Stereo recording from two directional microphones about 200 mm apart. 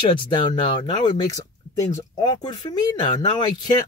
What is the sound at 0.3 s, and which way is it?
Speech, 20° left (ahead or behind).